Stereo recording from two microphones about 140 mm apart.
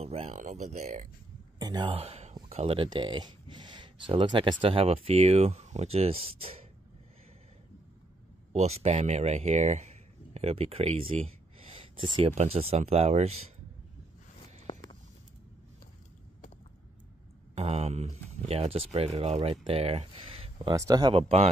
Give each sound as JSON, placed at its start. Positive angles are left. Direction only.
{"t": 0.0, "sound": "a sound", "side_deg": -50}
{"t": 1.6, "sound": "speech", "side_deg": -30}
{"t": 8.5, "sound": "speech", "side_deg": -50}
{"t": 14.7, "sound": "walk", "side_deg": 40}
{"t": 17.6, "sound": "speech", "side_deg": -50}
{"t": 20.7, "sound": "speech", "side_deg": -25}
{"t": 21.1, "sound": "speech", "side_deg": -45}